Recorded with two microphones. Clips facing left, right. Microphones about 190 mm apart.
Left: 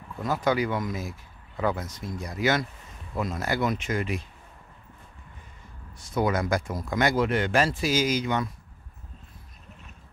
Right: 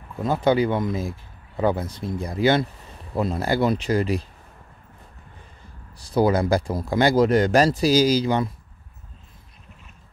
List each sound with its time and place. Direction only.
0.2 s speech: 30° right (ahead or behind)
5.9 s speech: 35° right (ahead or behind)